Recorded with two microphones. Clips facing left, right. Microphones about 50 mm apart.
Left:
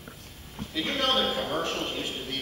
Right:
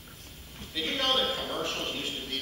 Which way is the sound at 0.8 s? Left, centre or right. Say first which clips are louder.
Left 2 dB; centre.